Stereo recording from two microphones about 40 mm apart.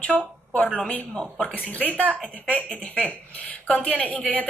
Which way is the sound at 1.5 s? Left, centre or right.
Left.